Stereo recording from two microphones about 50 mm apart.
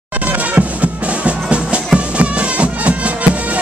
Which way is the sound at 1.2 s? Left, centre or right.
Right.